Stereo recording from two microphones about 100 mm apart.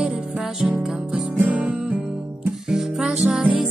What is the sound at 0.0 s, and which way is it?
Music, 10° right (ahead or behind).